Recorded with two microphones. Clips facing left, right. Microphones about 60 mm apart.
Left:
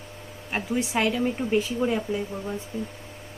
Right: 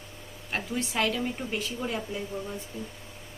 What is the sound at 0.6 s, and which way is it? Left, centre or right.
Speech, left.